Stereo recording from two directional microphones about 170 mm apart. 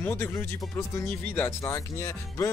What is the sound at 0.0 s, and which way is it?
Speech, 15° left (ahead or behind).